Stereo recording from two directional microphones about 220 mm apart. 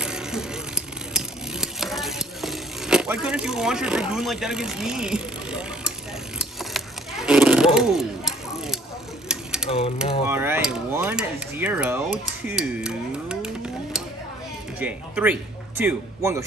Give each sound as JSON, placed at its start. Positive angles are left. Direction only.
{"t": 0.0, "sound": "a sound", "side_deg": -5}
{"t": 9.7, "sound": "mechanisms", "side_deg": 25}
{"t": 10.2, "sound": "speech", "side_deg": -10}
{"t": 14.8, "sound": "speech", "side_deg": -5}